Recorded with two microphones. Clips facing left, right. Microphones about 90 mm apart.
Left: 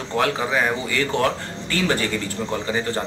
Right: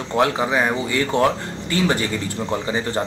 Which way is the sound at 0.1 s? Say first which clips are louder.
Right 3 dB; 20° right (ahead or behind).